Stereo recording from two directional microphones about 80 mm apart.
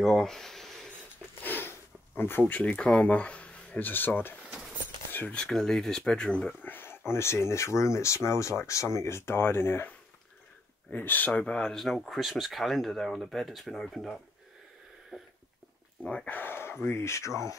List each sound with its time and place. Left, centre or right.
0.0 s speech: centre
1.4 s speech: left
5.3 s speech: centre
6.6 s a sound: left
7.1 s speech: left; by 14.1 s centre
15.1 s dog: centre
16.0 s speech: centre
16.3 s a sound: left
16.8 s speech: left